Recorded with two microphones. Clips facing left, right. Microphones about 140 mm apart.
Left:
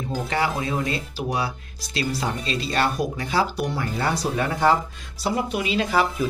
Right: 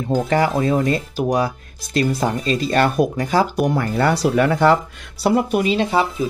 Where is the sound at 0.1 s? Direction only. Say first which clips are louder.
Right 8 dB; 45° right (ahead or behind); by 4.7 s 70° right (ahead or behind).